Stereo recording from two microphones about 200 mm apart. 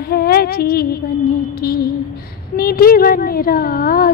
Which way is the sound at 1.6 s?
50° left (ahead or behind).